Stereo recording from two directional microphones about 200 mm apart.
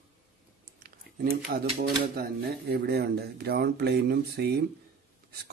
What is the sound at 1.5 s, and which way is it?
Speech, 45° right (ahead or behind).